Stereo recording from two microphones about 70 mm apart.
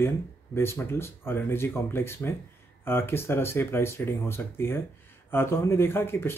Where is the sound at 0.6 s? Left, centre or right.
Left.